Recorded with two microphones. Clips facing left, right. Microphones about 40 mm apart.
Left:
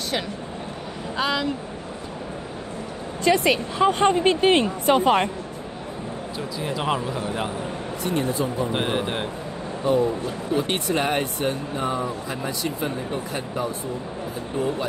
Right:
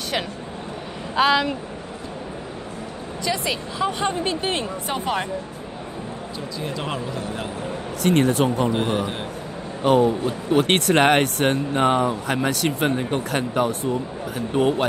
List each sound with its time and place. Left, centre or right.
1.1 s speech: right
3.3 s speech: left
6.6 s speech: centre
8.0 s speech: right
8.7 s speech: left
9.8 s speech: right